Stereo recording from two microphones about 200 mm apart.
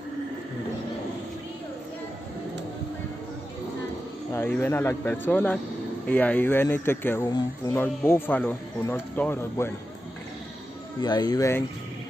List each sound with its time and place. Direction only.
4.3 s speech: 10° left (ahead or behind)
11.0 s speech: 20° left (ahead or behind)